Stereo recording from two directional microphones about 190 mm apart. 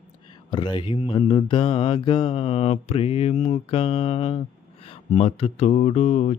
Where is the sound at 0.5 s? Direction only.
25° left (ahead or behind).